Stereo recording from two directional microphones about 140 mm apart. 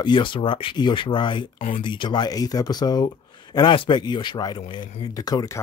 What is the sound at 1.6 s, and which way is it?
Speech, 60° left (ahead or behind).